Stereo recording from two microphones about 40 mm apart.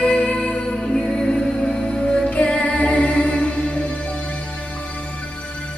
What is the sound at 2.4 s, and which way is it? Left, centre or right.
Music, left.